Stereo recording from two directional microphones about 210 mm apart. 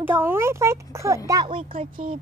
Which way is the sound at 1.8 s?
40° right (ahead or behind).